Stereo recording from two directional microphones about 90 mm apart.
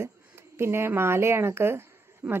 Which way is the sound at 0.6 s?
30° right (ahead or behind).